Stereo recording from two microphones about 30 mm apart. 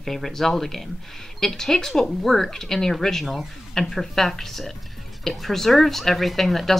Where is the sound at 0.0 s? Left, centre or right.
Centre.